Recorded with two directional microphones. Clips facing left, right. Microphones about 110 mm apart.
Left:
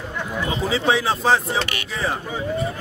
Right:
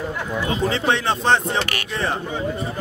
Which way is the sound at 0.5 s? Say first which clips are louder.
Even; centre (ahead or behind).